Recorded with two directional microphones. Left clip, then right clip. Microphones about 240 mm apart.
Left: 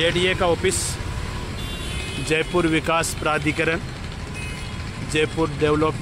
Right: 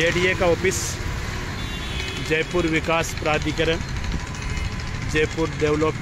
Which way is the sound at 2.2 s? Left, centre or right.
Centre.